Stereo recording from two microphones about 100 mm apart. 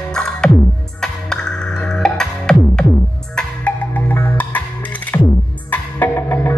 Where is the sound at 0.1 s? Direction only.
5° left (ahead or behind).